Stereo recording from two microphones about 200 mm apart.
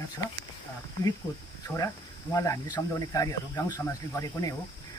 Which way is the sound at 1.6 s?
15° left (ahead or behind).